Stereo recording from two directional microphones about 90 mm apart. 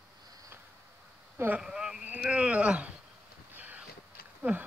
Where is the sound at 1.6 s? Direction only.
10° right (ahead or behind).